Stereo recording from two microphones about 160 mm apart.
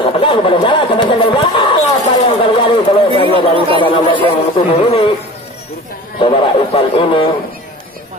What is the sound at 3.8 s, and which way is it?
Speech, 30° left (ahead or behind).